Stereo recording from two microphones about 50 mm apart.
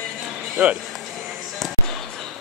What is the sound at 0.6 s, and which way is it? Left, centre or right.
Speech, right.